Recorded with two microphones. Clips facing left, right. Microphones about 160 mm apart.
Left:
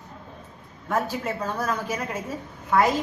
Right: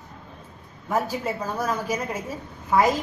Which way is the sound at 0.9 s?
10° right (ahead or behind).